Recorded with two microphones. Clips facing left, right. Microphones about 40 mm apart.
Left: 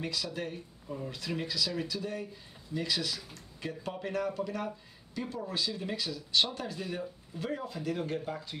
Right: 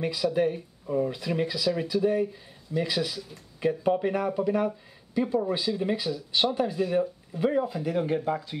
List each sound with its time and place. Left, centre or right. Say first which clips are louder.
0.0 s speech: right 11 dB; centre